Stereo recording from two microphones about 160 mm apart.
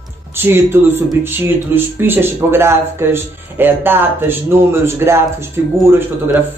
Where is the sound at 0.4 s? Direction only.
15° right (ahead or behind).